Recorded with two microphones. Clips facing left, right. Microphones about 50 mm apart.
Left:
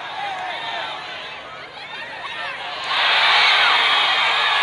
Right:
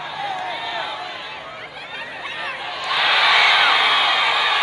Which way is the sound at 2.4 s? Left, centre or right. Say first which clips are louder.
Right 1 dB; centre.